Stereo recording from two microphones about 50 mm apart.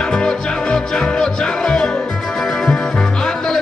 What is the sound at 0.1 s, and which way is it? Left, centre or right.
Music, centre.